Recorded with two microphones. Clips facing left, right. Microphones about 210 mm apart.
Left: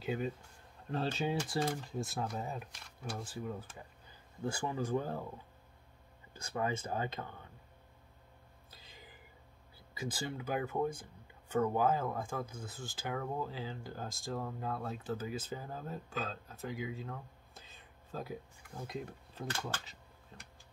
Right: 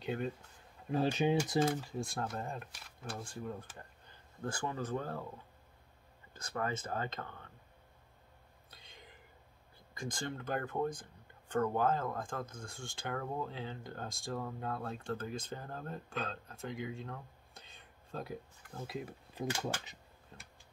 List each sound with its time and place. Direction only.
0.0 s speech: centre (ahead or behind)
0.8 s speech: 15° right (ahead or behind)
1.6 s speech: centre (ahead or behind)
6.3 s speech: 15° left (ahead or behind)
8.6 s a sound: centre (ahead or behind)
9.9 s speech: 5° left (ahead or behind)
19.3 s speech: 15° right (ahead or behind)
20.3 s a sound: centre (ahead or behind)